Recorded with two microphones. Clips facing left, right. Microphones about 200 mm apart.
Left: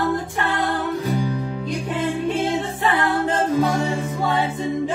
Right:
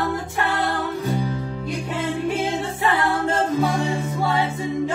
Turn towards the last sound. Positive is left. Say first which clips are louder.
# even
turn(degrees=15)  # may be behind; listen again after turning